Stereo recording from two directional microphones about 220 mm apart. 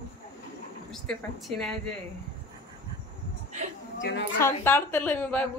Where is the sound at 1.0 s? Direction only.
Centre (ahead or behind).